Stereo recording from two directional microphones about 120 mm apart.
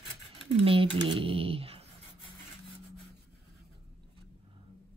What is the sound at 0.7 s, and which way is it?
Speech, 45° right (ahead or behind).